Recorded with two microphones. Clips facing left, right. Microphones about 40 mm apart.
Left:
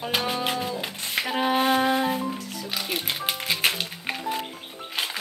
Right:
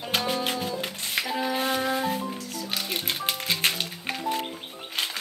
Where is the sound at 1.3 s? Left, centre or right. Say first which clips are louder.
Left 6 dB; left.